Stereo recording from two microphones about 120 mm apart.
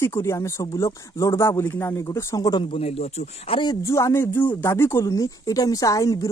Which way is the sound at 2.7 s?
55° left (ahead or behind).